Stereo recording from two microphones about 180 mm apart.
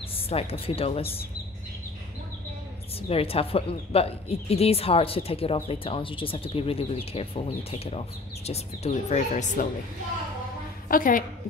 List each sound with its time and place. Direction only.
0.1 s a woman's voice: 35° left (ahead or behind)
3.0 s a woman's voice: 35° left (ahead or behind)
10.9 s a woman's voice: 50° left (ahead or behind)